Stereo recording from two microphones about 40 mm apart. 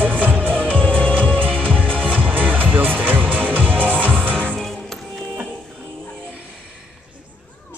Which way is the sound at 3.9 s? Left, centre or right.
Left.